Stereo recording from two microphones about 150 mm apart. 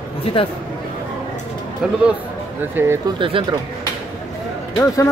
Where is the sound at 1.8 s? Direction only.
5° right (ahead or behind).